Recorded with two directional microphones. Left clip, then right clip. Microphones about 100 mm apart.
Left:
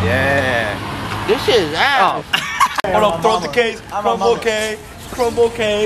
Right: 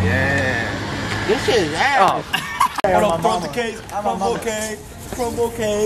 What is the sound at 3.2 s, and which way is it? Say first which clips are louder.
A man's voice: left 5 dB; 20° left (ahead or behind).